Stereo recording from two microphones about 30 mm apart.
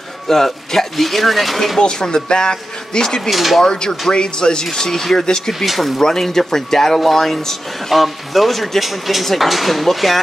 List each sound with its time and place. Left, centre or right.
0.3 s speech: centre
1.8 s speech: left
3.3 s speech: centre
3.6 s speech: left
5.7 s speech: centre
5.9 s speech: centre